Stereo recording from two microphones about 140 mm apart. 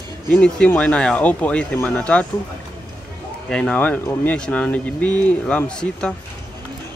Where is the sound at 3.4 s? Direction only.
5° left (ahead or behind).